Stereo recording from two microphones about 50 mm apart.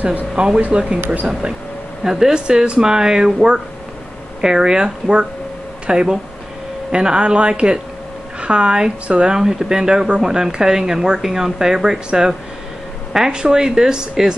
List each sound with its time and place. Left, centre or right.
0.6 s speech: right
2.0 s a woman's voice: centre